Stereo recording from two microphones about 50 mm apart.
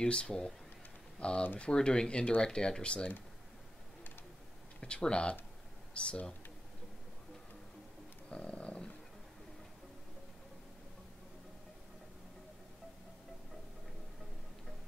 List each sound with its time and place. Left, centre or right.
0.0 s speech: centre
4.7 s speech: centre
8.3 s dog: left